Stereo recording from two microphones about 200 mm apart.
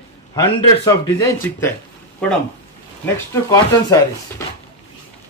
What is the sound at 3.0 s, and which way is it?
Speech, 15° left (ahead or behind).